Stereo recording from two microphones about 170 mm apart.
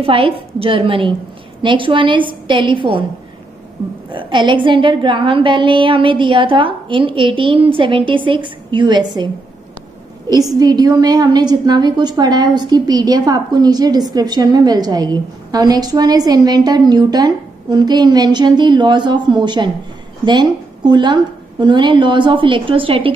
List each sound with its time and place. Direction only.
0.0 s a woman's voice: 35° right (ahead or behind)
4.1 s a woman's voice: 30° right (ahead or behind)
10.3 s a woman's voice: 20° right (ahead or behind)